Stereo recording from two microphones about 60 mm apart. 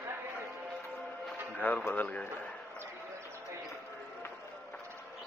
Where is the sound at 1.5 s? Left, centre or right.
Left.